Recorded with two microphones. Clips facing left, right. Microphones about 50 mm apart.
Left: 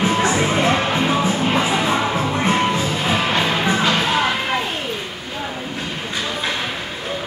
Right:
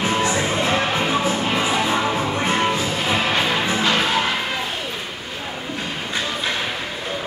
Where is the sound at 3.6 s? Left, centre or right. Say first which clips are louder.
Left 2 dB; left.